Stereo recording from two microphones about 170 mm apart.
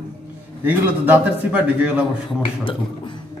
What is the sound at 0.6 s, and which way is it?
A man's voice, 10° right (ahead or behind).